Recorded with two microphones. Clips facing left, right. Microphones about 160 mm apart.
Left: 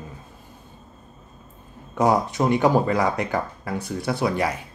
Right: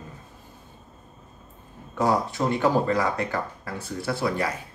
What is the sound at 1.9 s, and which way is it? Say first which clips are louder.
Speech: left 3 dB; 15° left (ahead or behind).